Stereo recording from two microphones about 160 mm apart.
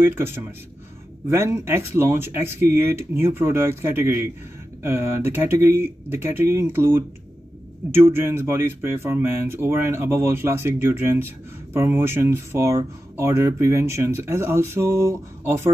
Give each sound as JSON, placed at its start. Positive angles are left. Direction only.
{"t": 0.0, "sound": "speech", "side_deg": -15}